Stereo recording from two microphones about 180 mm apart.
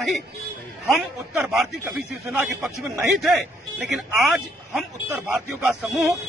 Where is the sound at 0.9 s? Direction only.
Centre (ahead or behind).